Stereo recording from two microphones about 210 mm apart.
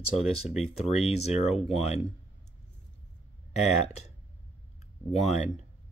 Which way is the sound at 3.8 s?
30° left (ahead or behind).